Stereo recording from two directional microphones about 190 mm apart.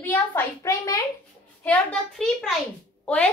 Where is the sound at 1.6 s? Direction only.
5° left (ahead or behind).